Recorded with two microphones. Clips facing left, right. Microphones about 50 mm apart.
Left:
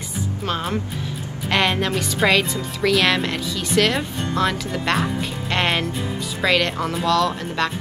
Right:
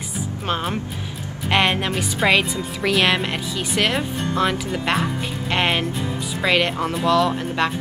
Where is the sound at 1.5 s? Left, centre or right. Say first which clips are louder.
Right 1 dB; centre.